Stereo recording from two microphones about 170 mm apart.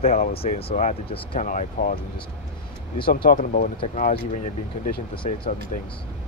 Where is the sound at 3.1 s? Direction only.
60° left (ahead or behind).